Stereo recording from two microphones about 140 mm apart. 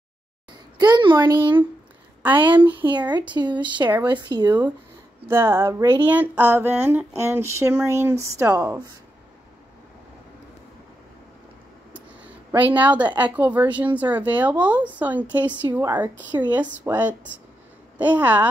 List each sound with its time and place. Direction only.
0.5 s a sound: 30° right (ahead or behind)
1.2 s speech: 35° right (ahead or behind)
5.3 s a woman's voice: 15° right (ahead or behind)
6.0 s a woman's voice: 10° right (ahead or behind)
11.9 s a sound: 10° right (ahead or behind)
13.2 s a woman's voice: 10° right (ahead or behind)